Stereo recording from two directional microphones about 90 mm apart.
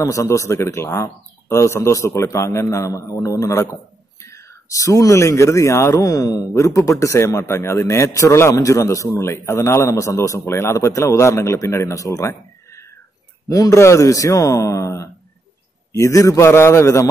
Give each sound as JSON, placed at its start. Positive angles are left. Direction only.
{"t": 0.0, "sound": "a man's voice", "side_deg": 35}